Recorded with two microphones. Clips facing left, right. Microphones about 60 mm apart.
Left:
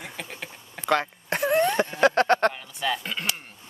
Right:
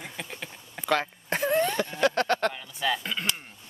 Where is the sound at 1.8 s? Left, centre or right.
Left.